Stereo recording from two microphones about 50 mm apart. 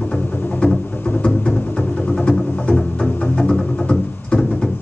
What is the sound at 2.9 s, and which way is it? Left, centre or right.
Music, centre.